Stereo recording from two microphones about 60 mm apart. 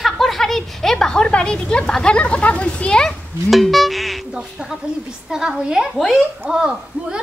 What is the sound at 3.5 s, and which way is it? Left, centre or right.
Speech, centre.